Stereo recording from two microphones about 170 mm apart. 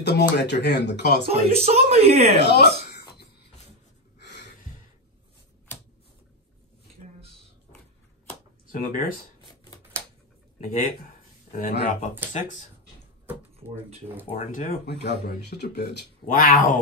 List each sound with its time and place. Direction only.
0.0 s speech: 85° left
1.3 s speech: 40° right (ahead or behind)
2.3 s a sound: 85° left
10.8 s speech: 60° left (ahead or behind)
12.4 s speech: 45° left (ahead or behind)
14.2 s speech: 35° left (ahead or behind)
14.5 s speech: 55° left (ahead or behind); by 16.1 s 75° left (ahead or behind)
16.3 s speech: 55° left (ahead or behind)